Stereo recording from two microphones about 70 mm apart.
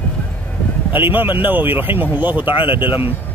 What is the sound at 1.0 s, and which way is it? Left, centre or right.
Speech, right.